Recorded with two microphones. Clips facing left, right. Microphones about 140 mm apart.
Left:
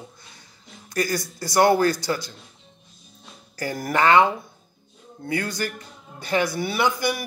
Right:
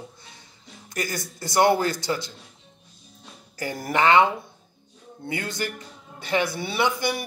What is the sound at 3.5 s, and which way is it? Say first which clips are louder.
A man's voice: left 1 dB; 25° right (ahead or behind).